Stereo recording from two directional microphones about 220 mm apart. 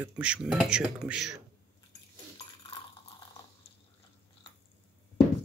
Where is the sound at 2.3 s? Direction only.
20° left (ahead or behind).